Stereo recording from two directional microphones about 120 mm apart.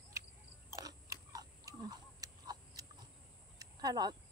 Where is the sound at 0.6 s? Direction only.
25° right (ahead or behind).